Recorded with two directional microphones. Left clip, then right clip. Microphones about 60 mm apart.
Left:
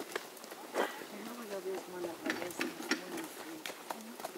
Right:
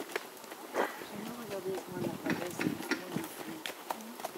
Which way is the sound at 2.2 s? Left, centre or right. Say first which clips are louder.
Right 2 dB; left.